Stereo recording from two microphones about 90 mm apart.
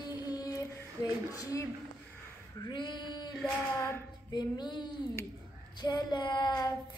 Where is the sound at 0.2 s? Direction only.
45° left (ahead or behind).